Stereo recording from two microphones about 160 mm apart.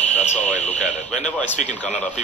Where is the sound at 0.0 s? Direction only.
45° left (ahead or behind).